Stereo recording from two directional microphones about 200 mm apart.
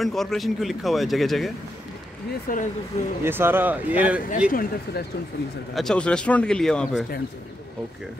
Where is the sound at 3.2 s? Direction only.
10° right (ahead or behind).